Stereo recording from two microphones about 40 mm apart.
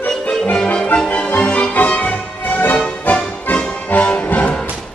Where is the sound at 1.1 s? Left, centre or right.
Left.